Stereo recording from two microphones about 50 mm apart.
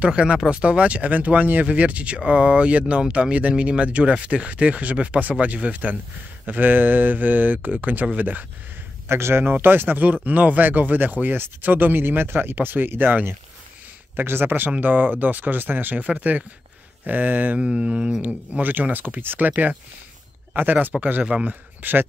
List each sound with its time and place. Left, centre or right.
0.0 s speech: right
9.1 s speech: right
9.4 s speech: right
17.6 s mantra: centre
18.2 s speech: right
21.3 s speech: right
21.8 s speech: right